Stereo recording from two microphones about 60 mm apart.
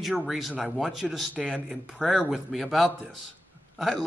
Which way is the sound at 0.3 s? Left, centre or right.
Centre.